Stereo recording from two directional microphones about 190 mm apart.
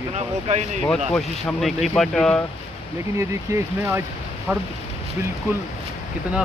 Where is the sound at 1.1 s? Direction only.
5° left (ahead or behind).